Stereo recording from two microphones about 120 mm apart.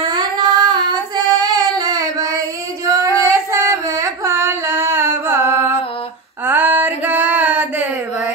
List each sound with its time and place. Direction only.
0.1 s child singing: 35° right (ahead or behind)
3.2 s singing: 25° right (ahead or behind)
6.4 s a sound: 15° right (ahead or behind)